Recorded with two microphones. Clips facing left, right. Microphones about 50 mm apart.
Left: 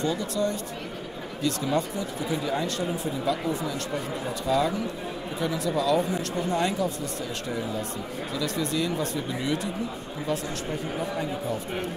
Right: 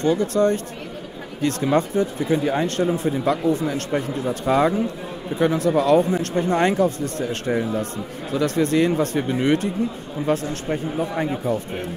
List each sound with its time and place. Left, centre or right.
0.0 s speech: right